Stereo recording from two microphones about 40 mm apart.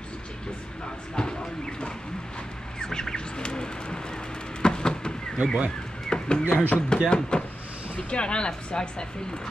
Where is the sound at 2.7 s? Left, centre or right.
Centre.